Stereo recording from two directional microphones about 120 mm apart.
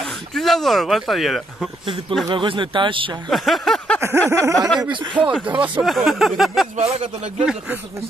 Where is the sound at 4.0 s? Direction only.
25° right (ahead or behind).